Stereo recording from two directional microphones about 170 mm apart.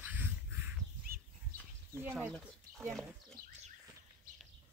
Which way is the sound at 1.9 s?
15° right (ahead or behind).